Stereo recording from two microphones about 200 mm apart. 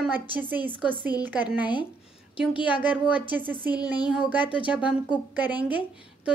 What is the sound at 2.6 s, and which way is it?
Speech, 10° right (ahead or behind).